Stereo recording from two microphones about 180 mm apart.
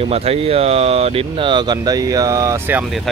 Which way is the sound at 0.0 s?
35° right (ahead or behind).